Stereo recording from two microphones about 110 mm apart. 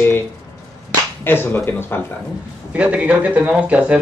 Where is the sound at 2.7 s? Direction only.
15° right (ahead or behind).